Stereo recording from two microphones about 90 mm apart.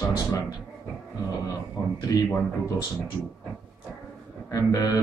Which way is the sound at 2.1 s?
40° left (ahead or behind).